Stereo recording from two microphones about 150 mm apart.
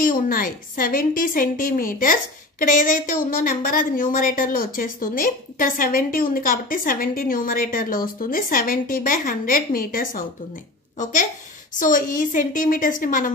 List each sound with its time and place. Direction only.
0.0 s a woman's voice: 65° left (ahead or behind)
11.0 s a woman's voice: 60° left (ahead or behind)